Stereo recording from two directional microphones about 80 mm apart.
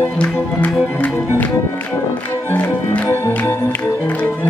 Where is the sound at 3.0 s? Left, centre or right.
Left.